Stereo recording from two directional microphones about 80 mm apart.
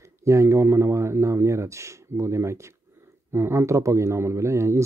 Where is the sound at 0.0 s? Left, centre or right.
Right.